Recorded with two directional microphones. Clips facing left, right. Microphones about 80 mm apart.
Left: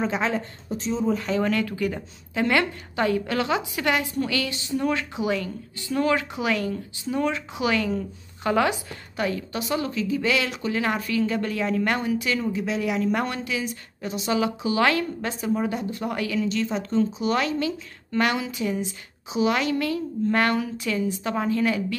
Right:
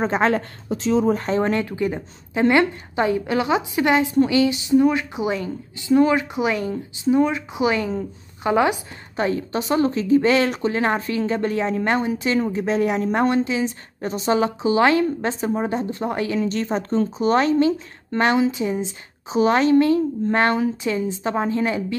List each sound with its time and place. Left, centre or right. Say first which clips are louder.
0.0 s a woman's voice: right 5 dB; right
0.3 s a woman's voice: right 6 dB; right
1.0 s a woman's voice: right 4 dB; right
19.3 s a woman's voice: right 7 dB; right